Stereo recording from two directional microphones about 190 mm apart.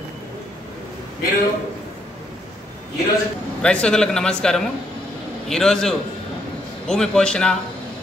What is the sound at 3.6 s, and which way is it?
A man's voice, 5° left (ahead or behind).